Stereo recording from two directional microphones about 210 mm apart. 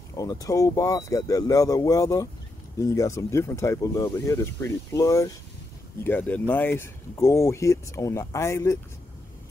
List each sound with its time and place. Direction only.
0.2 s speech: 15° left (ahead or behind)